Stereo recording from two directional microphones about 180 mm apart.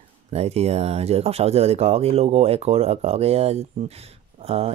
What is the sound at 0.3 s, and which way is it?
Speech, 35° right (ahead or behind).